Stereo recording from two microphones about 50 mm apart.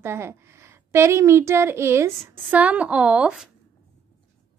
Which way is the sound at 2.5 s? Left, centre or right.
Right.